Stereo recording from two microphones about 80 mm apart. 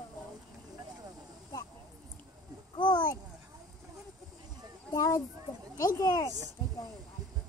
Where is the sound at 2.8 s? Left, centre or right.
Left.